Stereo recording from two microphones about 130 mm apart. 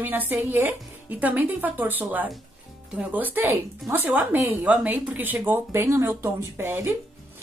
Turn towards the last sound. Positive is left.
turn(degrees=-20)  # may be behind; listen again after turning